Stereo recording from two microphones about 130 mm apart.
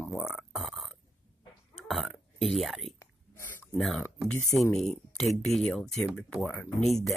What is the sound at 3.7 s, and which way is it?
Speech, centre (ahead or behind).